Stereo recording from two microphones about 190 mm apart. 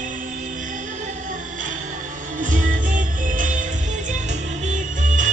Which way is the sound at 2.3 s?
45° right (ahead or behind).